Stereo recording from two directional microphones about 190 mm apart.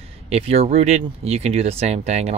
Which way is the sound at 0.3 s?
30° right (ahead or behind).